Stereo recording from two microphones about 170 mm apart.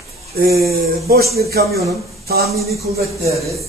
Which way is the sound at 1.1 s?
65° right (ahead or behind).